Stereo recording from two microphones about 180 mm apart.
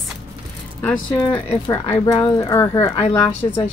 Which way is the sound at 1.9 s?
20° left (ahead or behind).